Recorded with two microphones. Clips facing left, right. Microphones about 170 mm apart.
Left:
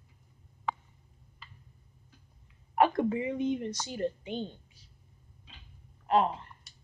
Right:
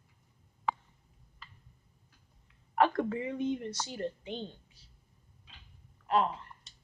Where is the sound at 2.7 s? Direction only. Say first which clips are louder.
Left 2 dB; 15° left (ahead or behind).